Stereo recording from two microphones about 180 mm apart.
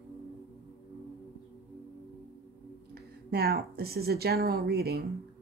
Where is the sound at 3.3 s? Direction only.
60° right (ahead or behind).